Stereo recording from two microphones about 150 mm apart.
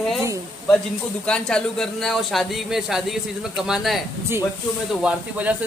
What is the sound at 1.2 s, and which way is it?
Speech, 5° left (ahead or behind).